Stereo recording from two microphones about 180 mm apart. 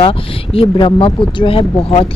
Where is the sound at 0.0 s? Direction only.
30° left (ahead or behind).